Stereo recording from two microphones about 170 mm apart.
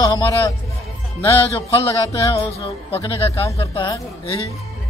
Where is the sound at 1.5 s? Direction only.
30° left (ahead or behind).